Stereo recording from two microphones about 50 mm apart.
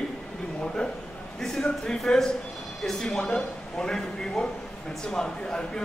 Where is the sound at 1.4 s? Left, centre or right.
Centre.